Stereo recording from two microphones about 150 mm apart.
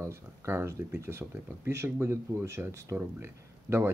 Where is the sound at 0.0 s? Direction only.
20° right (ahead or behind).